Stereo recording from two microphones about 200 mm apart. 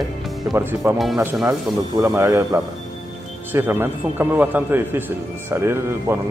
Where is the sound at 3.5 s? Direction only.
10° right (ahead or behind).